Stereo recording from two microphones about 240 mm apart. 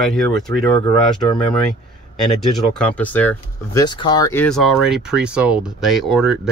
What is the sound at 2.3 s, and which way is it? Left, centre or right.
Speech, centre.